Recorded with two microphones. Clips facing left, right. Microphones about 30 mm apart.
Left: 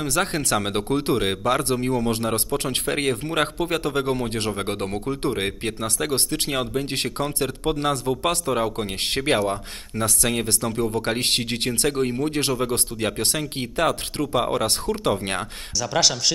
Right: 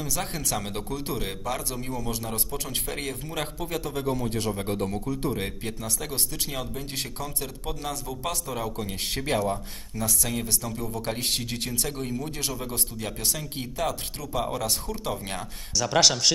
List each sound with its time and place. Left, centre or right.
0.0 s speech: left
11.9 s speech: left
15.8 s speech: centre